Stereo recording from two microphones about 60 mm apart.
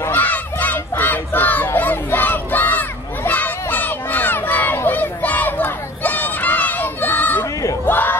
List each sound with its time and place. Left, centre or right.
0.1 s crowd: left